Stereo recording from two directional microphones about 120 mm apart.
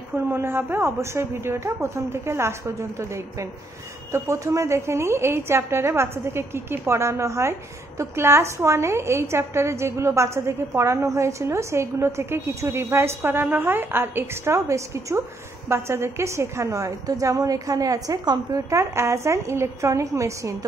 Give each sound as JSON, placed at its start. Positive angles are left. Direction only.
{"t": 0.1, "sound": "a woman's voice", "side_deg": -20}